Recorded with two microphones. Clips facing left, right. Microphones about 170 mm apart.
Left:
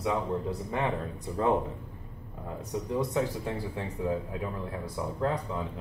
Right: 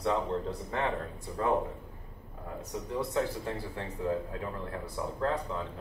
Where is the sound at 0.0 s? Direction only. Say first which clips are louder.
Even; 15° left (ahead or behind).